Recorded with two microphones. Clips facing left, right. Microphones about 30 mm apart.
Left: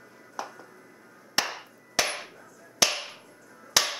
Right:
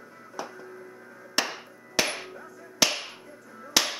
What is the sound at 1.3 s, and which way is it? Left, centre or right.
Hammer, centre.